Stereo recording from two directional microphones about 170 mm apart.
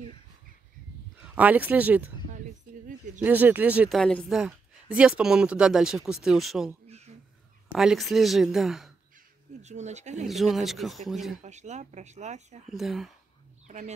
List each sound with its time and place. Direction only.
1.2 s speech: 10° right (ahead or behind)
2.3 s a sound: 50° right (ahead or behind)
3.2 s speech: 10° right (ahead or behind)
4.0 s speech: 5° left (ahead or behind)
9.6 s speech: 40° right (ahead or behind)
10.2 s speech: centre (ahead or behind)
11.4 s speech: 45° right (ahead or behind)
12.6 s speech: centre (ahead or behind)
13.7 s speech: 45° right (ahead or behind)